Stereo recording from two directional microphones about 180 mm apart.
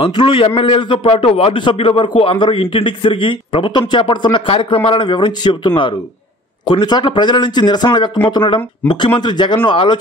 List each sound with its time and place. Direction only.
0.0 s a man's voice: 30° left (ahead or behind)